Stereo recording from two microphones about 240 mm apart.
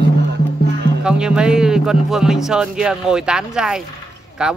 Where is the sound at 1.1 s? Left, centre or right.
Centre.